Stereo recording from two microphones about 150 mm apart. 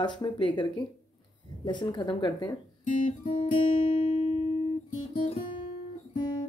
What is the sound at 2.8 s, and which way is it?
Guitar, 60° left (ahead or behind).